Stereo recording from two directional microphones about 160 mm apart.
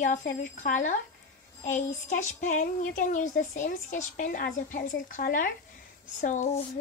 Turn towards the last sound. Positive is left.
turn(degrees=50)  # may be behind; listen again after turning